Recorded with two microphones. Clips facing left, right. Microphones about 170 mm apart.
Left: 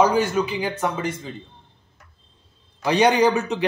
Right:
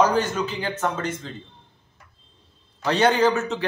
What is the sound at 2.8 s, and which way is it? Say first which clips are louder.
Speech: left 2 dB; 15° left (ahead or behind).